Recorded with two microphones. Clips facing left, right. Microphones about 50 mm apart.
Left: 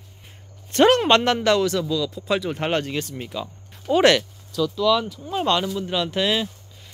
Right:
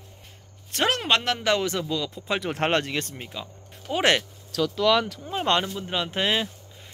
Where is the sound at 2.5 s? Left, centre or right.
Right.